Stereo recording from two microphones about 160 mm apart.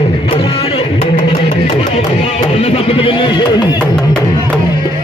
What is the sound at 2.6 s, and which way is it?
Speech, 35° left (ahead or behind).